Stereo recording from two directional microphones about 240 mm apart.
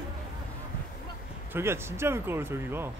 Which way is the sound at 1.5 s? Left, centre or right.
Centre.